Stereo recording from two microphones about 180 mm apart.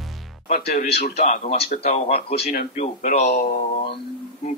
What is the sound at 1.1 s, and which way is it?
A man's voice, 40° left (ahead or behind).